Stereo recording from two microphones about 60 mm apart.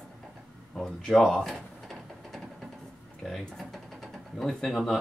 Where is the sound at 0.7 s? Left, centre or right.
Centre.